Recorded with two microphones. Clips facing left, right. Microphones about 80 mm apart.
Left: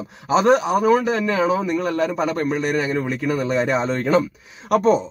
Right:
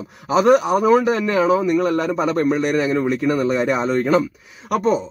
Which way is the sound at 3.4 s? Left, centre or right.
Centre.